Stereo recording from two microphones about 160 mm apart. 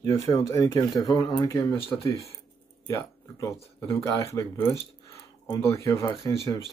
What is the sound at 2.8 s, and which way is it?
Speech, 20° left (ahead or behind).